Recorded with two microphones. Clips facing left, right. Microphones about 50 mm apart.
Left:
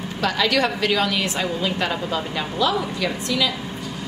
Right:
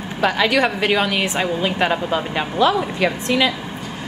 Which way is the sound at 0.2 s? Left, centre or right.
Right.